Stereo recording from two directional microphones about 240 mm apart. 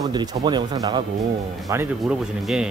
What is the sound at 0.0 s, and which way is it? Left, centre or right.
Speech, centre.